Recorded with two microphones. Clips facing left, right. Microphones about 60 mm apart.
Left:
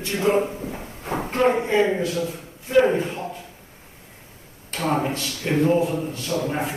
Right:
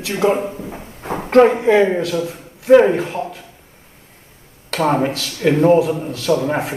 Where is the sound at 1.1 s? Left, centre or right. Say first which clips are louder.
Right 2 dB; right.